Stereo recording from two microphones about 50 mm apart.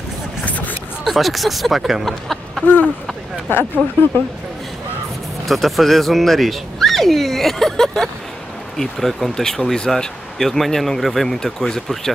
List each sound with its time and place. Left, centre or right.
0.5 s a sound: left
1.0 s speech: centre
2.6 s speech: left
3.5 s speech: left
5.5 s speech: centre